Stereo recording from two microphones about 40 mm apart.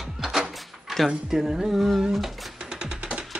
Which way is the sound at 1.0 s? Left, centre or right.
Centre.